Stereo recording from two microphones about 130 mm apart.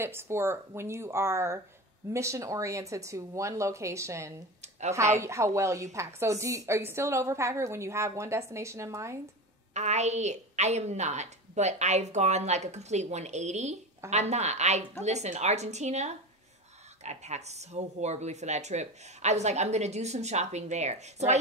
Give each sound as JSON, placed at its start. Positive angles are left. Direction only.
{"t": 0.0, "sound": "a woman's voice", "side_deg": -20}
{"t": 4.6, "sound": "a sound", "side_deg": -60}
{"t": 5.2, "sound": "a woman's voice", "side_deg": -20}
{"t": 9.8, "sound": "speech", "side_deg": -60}